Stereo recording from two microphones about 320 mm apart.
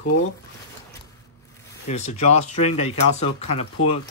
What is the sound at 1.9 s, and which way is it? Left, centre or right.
Speech, left.